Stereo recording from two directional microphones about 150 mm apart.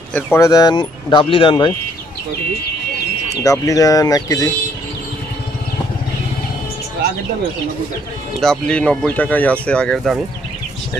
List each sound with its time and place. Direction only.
0.1 s speech: 20° left (ahead or behind); by 1.7 s 35° left (ahead or behind)
3.4 s speech: 25° left (ahead or behind)
8.4 s speech: 5° left (ahead or behind)